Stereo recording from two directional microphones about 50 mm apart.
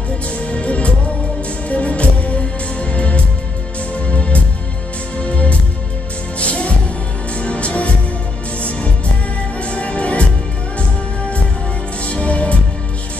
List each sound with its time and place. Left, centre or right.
0.5 s music: left
9.7 s music: left
12.1 s music: left